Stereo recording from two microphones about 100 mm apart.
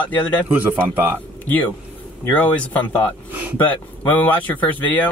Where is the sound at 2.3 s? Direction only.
15° left (ahead or behind).